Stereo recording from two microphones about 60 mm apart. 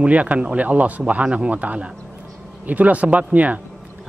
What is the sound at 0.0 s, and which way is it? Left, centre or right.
A man's voice, right.